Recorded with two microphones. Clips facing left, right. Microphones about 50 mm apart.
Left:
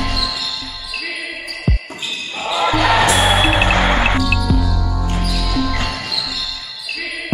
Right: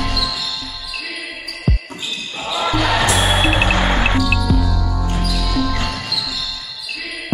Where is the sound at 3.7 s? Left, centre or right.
Centre.